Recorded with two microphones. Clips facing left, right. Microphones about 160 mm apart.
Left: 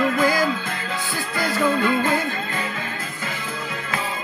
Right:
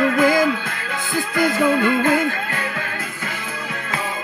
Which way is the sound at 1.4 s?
55° right (ahead or behind).